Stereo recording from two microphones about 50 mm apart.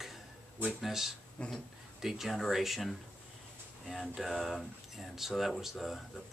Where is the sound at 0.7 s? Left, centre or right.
Centre.